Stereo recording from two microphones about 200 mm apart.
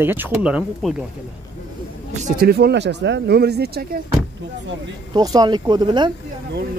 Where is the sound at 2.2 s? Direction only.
50° right (ahead or behind).